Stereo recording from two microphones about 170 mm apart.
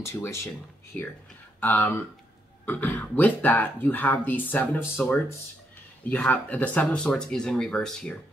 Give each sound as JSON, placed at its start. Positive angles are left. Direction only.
{"t": 0.0, "sound": "speech", "side_deg": 15}
{"t": 1.6, "sound": "speech", "side_deg": 10}
{"t": 6.0, "sound": "speech", "side_deg": 10}